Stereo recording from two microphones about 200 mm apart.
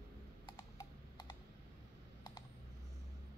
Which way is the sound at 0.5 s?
20° left (ahead or behind).